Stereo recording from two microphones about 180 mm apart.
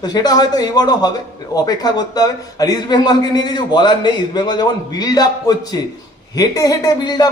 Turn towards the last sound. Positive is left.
turn(degrees=20)  # may be behind; listen again after turning